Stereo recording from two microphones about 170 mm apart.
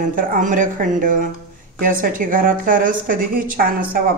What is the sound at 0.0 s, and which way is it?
A woman's voice, 55° right (ahead or behind).